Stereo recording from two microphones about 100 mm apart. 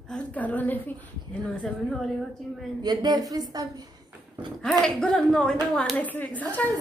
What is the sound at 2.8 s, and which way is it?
Speech, 45° right (ahead or behind).